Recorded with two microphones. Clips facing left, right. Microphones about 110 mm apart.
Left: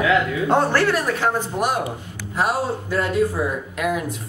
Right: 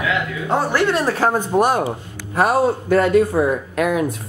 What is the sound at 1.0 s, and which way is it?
Speech, 35° right (ahead or behind).